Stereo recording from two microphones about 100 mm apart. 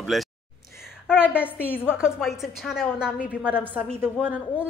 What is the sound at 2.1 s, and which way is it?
Speech, centre (ahead or behind).